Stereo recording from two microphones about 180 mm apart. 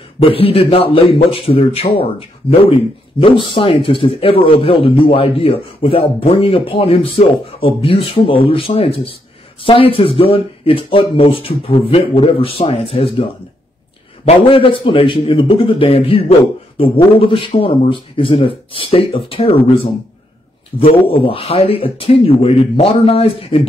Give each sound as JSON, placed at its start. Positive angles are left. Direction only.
{"t": 0.2, "sound": "a man's voice", "side_deg": 30}